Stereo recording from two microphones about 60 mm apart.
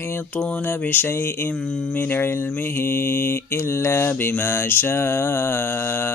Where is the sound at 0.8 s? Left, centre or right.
Left.